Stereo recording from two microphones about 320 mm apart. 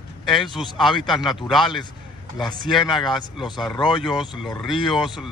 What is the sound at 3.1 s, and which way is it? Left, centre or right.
Speech, centre.